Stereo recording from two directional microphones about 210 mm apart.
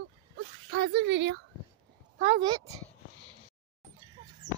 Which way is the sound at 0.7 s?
50° right (ahead or behind).